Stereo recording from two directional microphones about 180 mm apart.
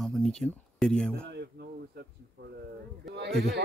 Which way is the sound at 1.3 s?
70° right (ahead or behind).